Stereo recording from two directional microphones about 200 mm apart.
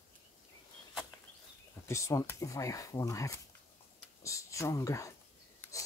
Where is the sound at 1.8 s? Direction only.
15° left (ahead or behind).